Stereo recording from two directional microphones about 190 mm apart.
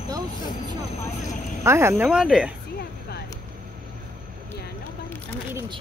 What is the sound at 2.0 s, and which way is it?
Speech, 5° right (ahead or behind).